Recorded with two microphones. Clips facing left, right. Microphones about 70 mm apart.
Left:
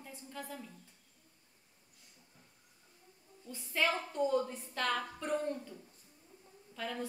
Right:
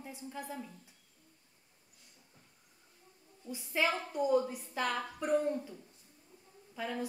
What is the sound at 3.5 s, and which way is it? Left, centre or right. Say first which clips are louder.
A woman's voice: right 1 dB; centre.